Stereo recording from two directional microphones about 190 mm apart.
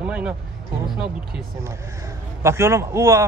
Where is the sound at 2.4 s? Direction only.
15° right (ahead or behind).